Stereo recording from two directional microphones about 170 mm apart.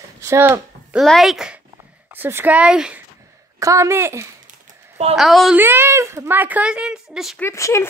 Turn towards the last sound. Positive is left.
turn(degrees=15)  # may be behind; listen again after turning